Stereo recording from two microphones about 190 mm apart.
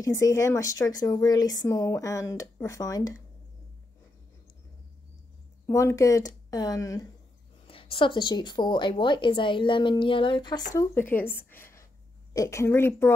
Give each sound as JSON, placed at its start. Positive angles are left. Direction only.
{"t": 0.0, "sound": "speech", "side_deg": 15}
{"t": 5.7, "sound": "a woman's voice", "side_deg": 15}
{"t": 7.6, "sound": "a woman's voice", "side_deg": 30}
{"t": 10.7, "sound": "speech", "side_deg": 15}
{"t": 11.5, "sound": "a sound", "side_deg": 15}
{"t": 12.4, "sound": "speech", "side_deg": 15}